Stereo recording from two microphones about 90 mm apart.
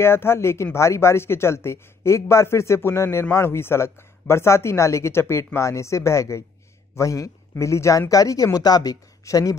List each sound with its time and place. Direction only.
0.0 s speech: 30° left (ahead or behind)